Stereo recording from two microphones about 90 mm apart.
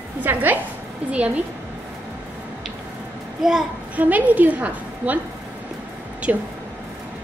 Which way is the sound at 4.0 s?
15° right (ahead or behind).